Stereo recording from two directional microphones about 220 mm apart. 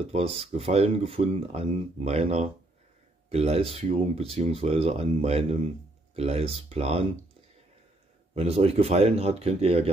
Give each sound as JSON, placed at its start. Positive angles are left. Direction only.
{"t": 0.0, "sound": "speech", "side_deg": -25}
{"t": 8.4, "sound": "speech", "side_deg": -25}